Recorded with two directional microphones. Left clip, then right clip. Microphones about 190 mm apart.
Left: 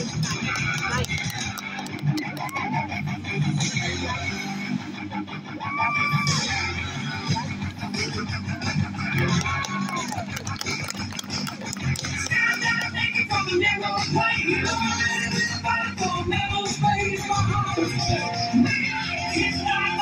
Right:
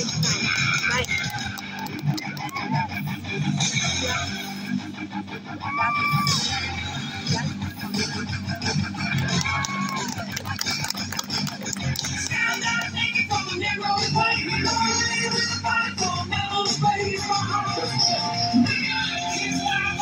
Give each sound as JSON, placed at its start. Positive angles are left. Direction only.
{"t": 0.0, "sound": "music", "side_deg": 0}
{"t": 3.4, "sound": "music", "side_deg": 5}
{"t": 6.2, "sound": "music", "side_deg": 0}
{"t": 12.3, "sound": "music", "side_deg": 0}
{"t": 13.9, "sound": "music", "side_deg": 15}